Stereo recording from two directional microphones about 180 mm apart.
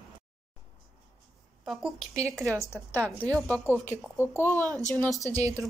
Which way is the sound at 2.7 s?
10° left (ahead or behind).